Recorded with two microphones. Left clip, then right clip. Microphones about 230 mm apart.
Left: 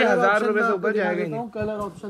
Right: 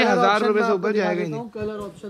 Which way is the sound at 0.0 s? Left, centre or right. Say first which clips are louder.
Right 1 dB; centre.